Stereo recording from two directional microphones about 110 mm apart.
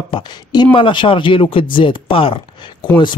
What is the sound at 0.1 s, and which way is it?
Speech, 40° left (ahead or behind).